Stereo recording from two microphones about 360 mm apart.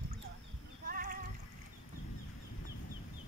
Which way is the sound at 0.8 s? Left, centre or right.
Right.